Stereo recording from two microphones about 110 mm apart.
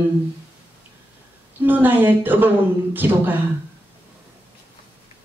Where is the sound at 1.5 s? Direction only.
15° right (ahead or behind).